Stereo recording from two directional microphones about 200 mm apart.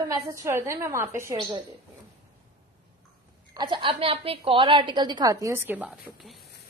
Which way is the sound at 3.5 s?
25° right (ahead or behind).